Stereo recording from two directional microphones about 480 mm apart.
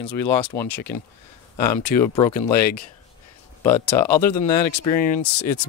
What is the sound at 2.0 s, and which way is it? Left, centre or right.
Speech, centre.